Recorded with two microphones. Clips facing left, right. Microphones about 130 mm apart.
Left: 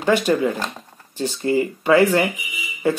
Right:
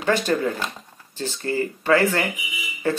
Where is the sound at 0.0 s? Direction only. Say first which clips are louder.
Left 3 dB; 15° left (ahead or behind).